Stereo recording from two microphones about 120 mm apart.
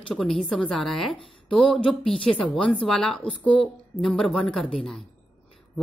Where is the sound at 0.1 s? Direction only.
Centre (ahead or behind).